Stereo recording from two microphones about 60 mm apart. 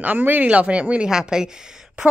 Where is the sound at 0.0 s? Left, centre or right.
Right.